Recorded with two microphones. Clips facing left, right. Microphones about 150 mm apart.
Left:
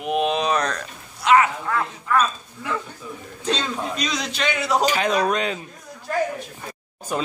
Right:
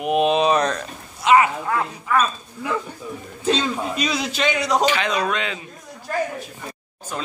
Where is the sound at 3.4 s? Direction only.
5° right (ahead or behind).